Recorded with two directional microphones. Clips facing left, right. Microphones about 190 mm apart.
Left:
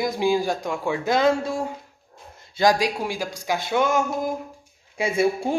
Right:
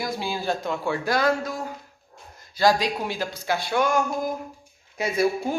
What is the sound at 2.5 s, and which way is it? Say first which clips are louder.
A man's voice: left 1 dB; 15° left (ahead or behind).